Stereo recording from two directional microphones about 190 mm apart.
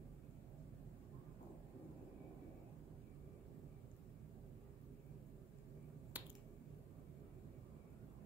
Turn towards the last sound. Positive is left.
turn(degrees=-10)  # may be behind; listen again after turning